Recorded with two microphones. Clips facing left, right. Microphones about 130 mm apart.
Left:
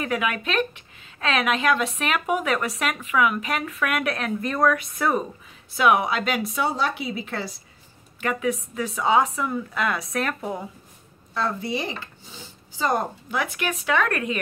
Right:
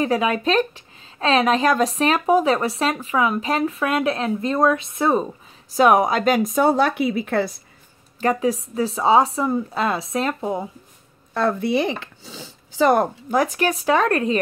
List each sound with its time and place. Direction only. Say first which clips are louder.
0.0 s a woman's voice: right 6 dB; 30° right (ahead or behind)
5.8 s speech: right 5 dB; 40° right (ahead or behind); by 7.5 s 55° right (ahead or behind)
8.2 s a woman's voice: right 5 dB; 35° right (ahead or behind)
11.3 s speech: right 7 dB; 60° right (ahead or behind)
13.3 s a woman's voice: right 7 dB; 40° right (ahead or behind)